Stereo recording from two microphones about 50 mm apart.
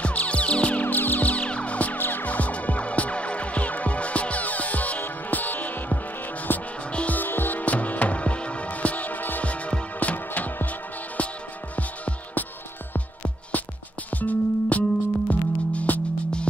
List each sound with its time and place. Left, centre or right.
0.0 s music: left
2.0 s music: left
6.9 s music: left
7.2 s music: left
14.1 s music: left